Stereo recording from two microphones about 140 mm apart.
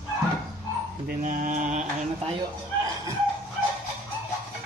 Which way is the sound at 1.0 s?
80° right.